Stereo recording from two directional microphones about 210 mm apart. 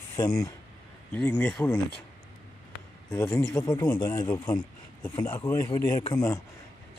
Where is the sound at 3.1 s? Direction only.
10° left (ahead or behind).